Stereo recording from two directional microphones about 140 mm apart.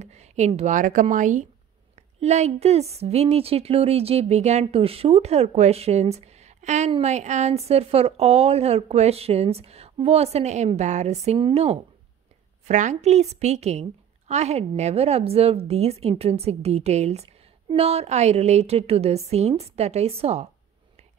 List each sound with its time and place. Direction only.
0.0 s speech: 55° right (ahead or behind)
11.3 s speech: 40° right (ahead or behind)
12.6 s speech: 60° right (ahead or behind)